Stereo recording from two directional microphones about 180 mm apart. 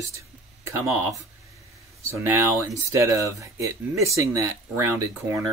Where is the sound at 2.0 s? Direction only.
15° right (ahead or behind).